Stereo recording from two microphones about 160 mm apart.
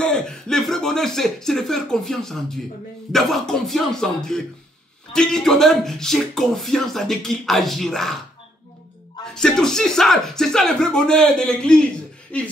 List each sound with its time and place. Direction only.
0.0 s speech: 5° left (ahead or behind)
9.2 s speech: 5° left (ahead or behind)